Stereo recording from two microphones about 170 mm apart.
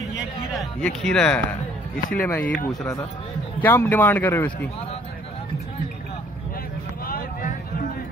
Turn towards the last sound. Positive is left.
turn(degrees=60)  # may be behind; listen again after turning